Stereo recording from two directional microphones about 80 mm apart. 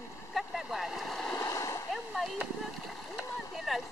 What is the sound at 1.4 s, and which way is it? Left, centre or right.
Splash, left.